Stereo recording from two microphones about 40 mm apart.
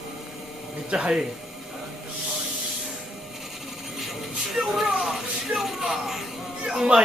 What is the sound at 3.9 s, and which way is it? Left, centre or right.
Speech, centre.